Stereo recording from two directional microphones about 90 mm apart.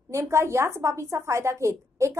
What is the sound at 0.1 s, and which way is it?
A woman's voice, 35° right (ahead or behind).